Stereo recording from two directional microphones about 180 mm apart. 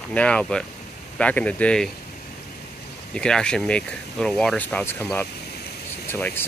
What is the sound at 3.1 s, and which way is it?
Speech, 5° left (ahead or behind).